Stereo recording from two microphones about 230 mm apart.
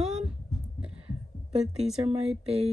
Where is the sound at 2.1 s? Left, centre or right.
Right.